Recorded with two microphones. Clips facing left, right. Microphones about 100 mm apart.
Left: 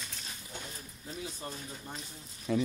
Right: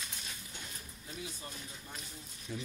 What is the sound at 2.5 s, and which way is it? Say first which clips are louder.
Speech: left 12 dB; 90° left.